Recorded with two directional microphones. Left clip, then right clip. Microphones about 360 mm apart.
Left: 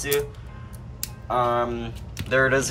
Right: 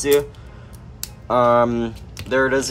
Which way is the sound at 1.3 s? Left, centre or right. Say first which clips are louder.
Right 7 dB; centre.